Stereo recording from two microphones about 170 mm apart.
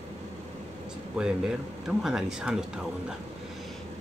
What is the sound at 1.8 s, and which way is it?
Speech, 5° right (ahead or behind).